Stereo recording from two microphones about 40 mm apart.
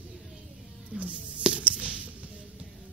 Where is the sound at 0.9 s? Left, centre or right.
Right.